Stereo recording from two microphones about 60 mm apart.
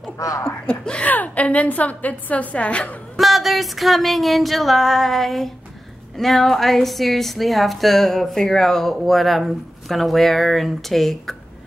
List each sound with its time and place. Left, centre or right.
0.2 s speech: left
0.7 s a sound: centre
1.1 s a woman's voice: left
3.2 s a woman's voice: centre